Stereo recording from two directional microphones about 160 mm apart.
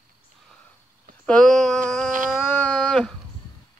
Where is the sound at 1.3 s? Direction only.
5° left (ahead or behind).